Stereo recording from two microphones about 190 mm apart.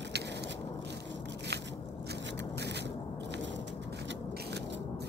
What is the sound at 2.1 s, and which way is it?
Scrape, 65° right (ahead or behind).